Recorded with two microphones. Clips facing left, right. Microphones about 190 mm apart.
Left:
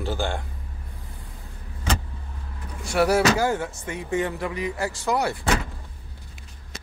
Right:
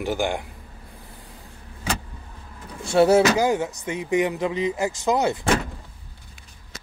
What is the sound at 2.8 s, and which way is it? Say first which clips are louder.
Speech: right 4 dB; 25° right (ahead or behind).